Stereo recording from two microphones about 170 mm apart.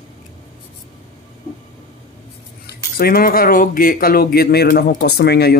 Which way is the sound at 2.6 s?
65° left (ahead or behind).